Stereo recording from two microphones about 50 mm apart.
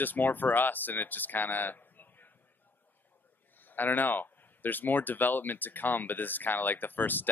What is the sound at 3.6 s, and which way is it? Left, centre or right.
Speech, left.